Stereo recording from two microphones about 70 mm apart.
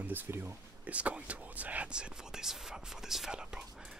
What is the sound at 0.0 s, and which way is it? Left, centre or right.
Speech, right.